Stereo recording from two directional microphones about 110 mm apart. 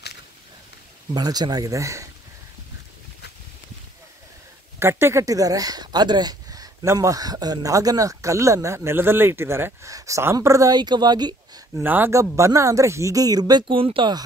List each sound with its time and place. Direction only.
1.1 s speech: 40° right (ahead or behind)
4.7 s speech: 25° right (ahead or behind)
10.8 s speech: 40° right (ahead or behind)
11.8 s speech: 15° right (ahead or behind); by 14.1 s 55° right (ahead or behind)